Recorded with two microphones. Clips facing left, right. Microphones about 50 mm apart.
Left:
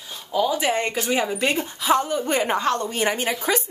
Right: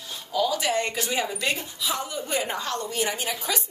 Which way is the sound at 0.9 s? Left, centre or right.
Centre.